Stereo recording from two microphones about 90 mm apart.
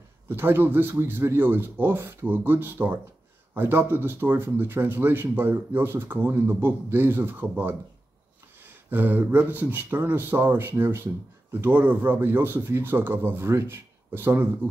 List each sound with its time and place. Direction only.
0.3 s speech: 25° right (ahead or behind)